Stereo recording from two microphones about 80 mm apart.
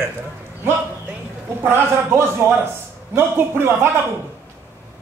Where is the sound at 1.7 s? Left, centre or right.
Right.